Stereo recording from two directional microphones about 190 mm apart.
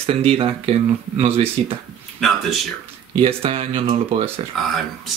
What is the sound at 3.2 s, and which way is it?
Speech, 30° right (ahead or behind).